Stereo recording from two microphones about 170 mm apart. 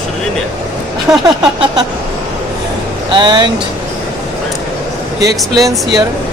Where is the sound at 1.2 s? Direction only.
30° right (ahead or behind).